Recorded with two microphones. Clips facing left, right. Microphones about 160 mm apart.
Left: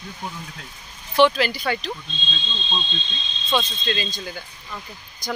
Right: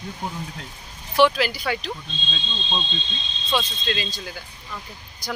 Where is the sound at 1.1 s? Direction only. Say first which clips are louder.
Left 1 dB; 5° right (ahead or behind).